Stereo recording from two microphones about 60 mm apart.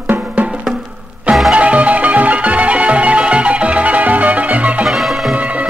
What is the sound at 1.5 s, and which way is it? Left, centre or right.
Music, right.